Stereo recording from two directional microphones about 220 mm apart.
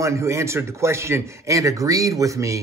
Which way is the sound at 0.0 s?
15° right (ahead or behind).